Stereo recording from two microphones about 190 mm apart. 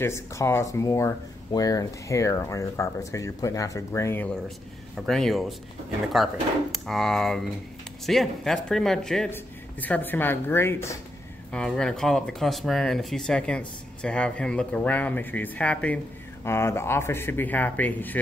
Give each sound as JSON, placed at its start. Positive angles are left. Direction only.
{"t": 0.0, "sound": "speech", "side_deg": 15}